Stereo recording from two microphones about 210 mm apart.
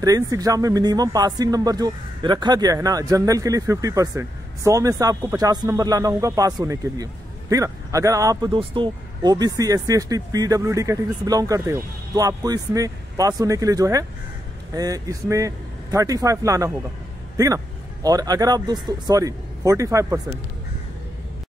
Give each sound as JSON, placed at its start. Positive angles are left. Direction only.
{"t": 0.0, "sound": "speech", "side_deg": -15}
{"t": 18.0, "sound": "speech", "side_deg": -20}